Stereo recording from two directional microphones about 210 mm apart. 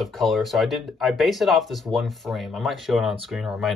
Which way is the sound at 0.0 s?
Centre (ahead or behind).